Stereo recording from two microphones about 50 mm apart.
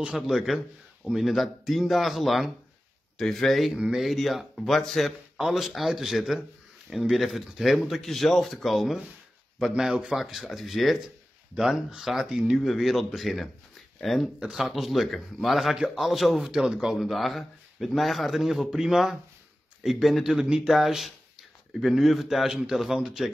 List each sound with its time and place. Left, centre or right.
0.6 s speech: centre
1.2 s a man's voice: centre
11.5 s a man's voice: centre
17.0 s speech: centre
20.4 s a man's voice: centre
20.7 s speech: centre